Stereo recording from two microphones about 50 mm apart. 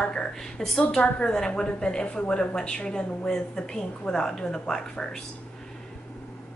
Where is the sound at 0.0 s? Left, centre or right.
Centre.